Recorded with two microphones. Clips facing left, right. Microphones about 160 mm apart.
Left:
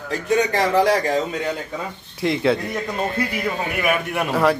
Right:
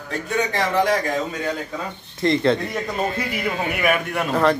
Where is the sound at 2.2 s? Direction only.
5° left (ahead or behind).